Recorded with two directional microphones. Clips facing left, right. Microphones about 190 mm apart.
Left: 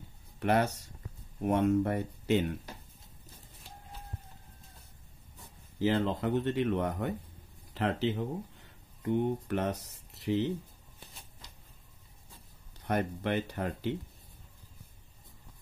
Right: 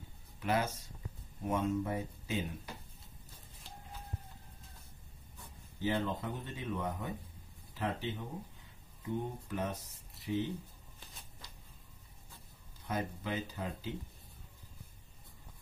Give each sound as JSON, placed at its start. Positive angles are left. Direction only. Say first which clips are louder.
{"t": 0.4, "sound": "speech", "louder": "left 6 dB", "side_deg": 65}
{"t": 5.8, "sound": "speech", "louder": "left 6 dB", "side_deg": 80}
{"t": 12.8, "sound": "speech", "louder": "left 6 dB", "side_deg": 70}